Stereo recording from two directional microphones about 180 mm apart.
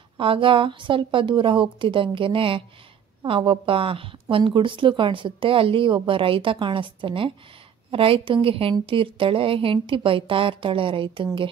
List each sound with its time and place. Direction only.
0.2 s speech: 30° right (ahead or behind)